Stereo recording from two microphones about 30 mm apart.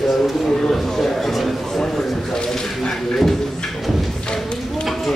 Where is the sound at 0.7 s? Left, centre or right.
Centre.